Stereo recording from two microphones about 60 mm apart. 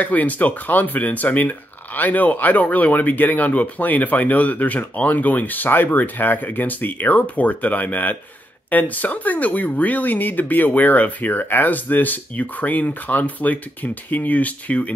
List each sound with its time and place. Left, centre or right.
0.0 s speech: left